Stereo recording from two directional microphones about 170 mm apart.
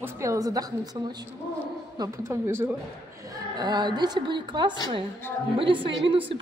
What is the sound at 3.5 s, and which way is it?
A woman's voice, 25° right (ahead or behind).